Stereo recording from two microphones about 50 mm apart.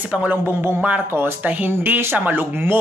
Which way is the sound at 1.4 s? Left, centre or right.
Right.